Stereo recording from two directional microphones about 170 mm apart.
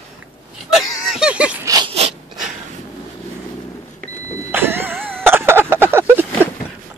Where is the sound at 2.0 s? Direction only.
40° right (ahead or behind).